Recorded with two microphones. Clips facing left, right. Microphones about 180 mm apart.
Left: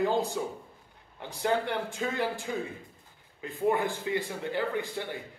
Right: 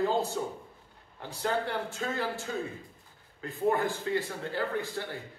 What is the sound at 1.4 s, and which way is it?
A man's voice, 15° left (ahead or behind).